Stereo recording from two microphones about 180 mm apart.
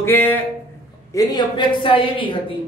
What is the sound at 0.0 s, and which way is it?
A man's voice, 10° left (ahead or behind).